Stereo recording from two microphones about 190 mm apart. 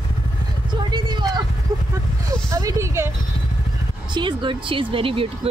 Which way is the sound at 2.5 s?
15° right (ahead or behind).